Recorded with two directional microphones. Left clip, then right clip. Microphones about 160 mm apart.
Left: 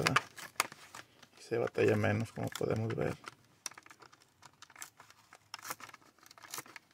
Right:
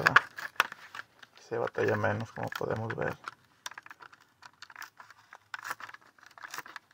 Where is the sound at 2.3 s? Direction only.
25° left (ahead or behind).